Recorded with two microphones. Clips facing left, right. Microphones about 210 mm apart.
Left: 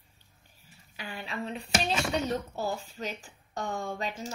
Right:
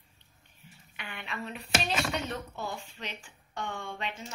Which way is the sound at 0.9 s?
35° left (ahead or behind).